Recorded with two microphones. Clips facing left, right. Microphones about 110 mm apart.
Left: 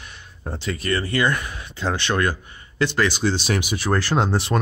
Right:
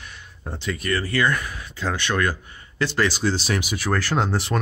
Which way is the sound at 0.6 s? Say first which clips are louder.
Left 1 dB; 30° left (ahead or behind).